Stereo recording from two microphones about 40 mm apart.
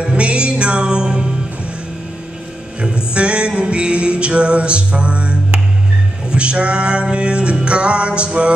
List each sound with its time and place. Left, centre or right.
0.0 s music: right
2.8 s music: right